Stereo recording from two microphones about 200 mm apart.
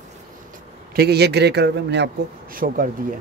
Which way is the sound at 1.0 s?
55° right (ahead or behind).